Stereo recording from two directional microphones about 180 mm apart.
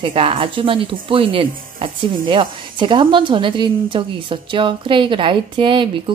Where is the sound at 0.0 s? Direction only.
30° right (ahead or behind).